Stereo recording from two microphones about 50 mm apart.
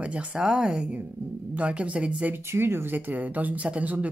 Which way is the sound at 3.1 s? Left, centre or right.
Right.